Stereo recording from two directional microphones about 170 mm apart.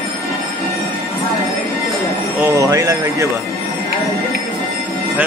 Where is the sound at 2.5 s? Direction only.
20° right (ahead or behind).